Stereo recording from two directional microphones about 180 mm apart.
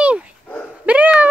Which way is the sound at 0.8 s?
5° right (ahead or behind).